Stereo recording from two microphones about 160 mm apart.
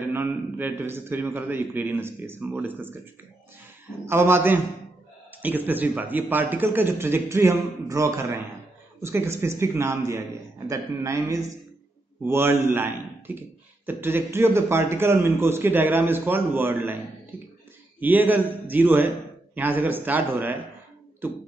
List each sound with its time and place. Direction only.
0.1 s a man's voice: 15° right (ahead or behind)
4.0 s a man's voice: 15° right (ahead or behind)
17.3 s beatboxing: 10° right (ahead or behind)
18.0 s a man's voice: 10° right (ahead or behind)